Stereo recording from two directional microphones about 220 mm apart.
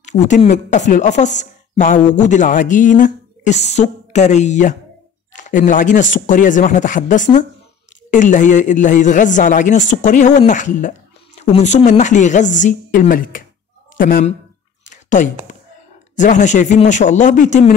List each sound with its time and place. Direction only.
0.2 s a woman's voice: 35° left (ahead or behind)
14.9 s a sound: 35° left (ahead or behind)
16.2 s a woman's voice: 35° left (ahead or behind)